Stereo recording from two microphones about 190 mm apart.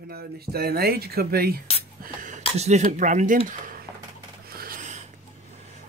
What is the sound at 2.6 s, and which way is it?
Speech, 40° right (ahead or behind).